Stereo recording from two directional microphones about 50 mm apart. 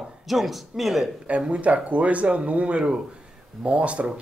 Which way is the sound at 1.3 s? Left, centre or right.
Right.